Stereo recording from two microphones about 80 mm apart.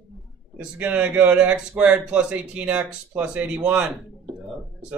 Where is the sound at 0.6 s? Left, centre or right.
Centre.